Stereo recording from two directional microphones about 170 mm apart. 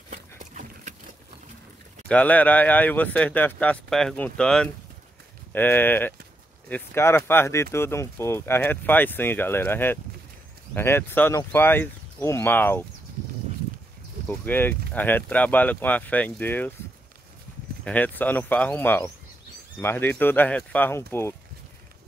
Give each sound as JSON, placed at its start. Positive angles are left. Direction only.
{"t": 0.1, "sound": "a sound", "side_deg": -45}
{"t": 2.0, "sound": "speech", "side_deg": 10}
{"t": 14.4, "sound": "speech", "side_deg": 10}
{"t": 17.8, "sound": "speech", "side_deg": 10}